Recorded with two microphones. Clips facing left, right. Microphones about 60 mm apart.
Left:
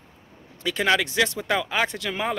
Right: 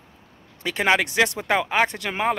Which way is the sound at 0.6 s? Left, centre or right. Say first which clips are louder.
Right 1 dB; right.